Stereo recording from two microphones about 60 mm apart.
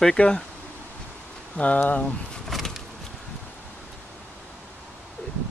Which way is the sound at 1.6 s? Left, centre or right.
Left.